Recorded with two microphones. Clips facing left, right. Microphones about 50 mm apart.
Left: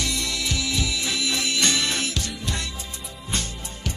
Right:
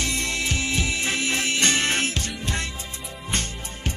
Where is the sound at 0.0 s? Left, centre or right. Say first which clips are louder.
Right 1 dB; right.